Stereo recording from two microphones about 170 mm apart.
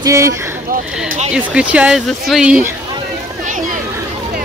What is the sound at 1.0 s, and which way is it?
Speech, 45° right (ahead or behind).